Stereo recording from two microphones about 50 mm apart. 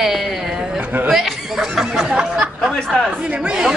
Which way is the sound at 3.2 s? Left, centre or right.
Centre.